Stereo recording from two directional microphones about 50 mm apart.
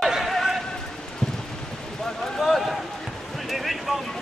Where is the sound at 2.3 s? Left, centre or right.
Centre.